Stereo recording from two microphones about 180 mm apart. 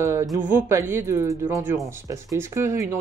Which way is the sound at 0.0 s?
15° right (ahead or behind).